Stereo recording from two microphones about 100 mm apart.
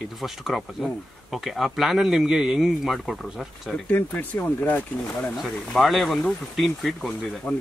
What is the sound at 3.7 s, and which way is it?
Speech, 15° left (ahead or behind).